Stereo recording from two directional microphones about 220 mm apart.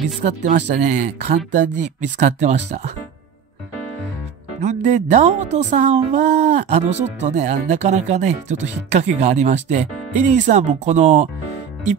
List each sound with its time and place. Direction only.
0.2 s speech: 35° right (ahead or behind)
4.6 s speech: 30° right (ahead or behind)